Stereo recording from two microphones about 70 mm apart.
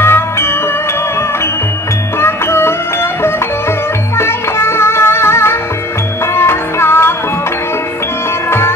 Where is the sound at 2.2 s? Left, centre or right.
Left.